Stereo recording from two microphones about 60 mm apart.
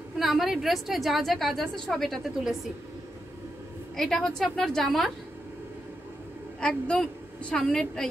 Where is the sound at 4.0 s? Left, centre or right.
Centre.